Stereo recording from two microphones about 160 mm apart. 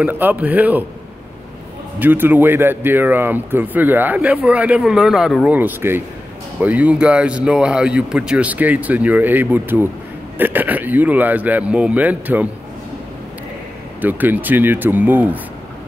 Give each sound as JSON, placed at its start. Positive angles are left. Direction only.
{"t": 0.0, "sound": "speech", "side_deg": -10}
{"t": 2.0, "sound": "speech", "side_deg": -10}
{"t": 14.0, "sound": "speech", "side_deg": -10}